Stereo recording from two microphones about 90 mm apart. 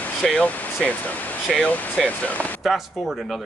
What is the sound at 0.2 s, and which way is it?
Speech, 10° left (ahead or behind).